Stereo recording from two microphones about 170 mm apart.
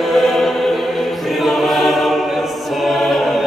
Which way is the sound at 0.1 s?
Centre (ahead or behind).